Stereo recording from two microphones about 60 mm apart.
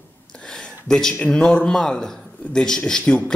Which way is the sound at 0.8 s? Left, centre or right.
Centre.